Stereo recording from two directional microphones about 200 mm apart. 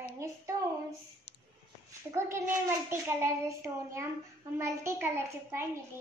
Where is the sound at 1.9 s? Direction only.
15° right (ahead or behind).